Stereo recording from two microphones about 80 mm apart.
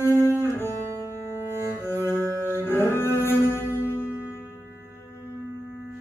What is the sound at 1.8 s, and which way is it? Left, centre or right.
Cello, left.